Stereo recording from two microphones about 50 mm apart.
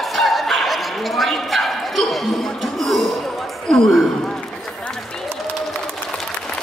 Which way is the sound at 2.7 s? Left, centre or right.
Centre.